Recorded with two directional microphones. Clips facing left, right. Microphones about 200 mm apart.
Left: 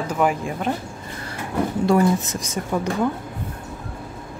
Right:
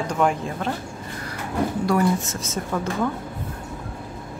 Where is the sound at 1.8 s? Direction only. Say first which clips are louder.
Left 4 dB; 20° left (ahead or behind).